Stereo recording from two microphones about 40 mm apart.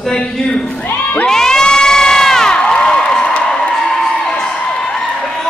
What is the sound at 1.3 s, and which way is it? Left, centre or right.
Crowd, centre.